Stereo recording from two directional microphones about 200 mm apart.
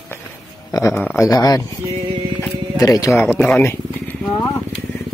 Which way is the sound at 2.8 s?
15° left (ahead or behind).